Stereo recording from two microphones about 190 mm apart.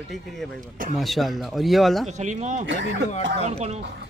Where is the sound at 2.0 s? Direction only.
35° right (ahead or behind).